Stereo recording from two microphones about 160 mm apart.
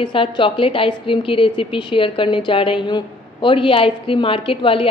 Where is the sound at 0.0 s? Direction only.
30° left (ahead or behind).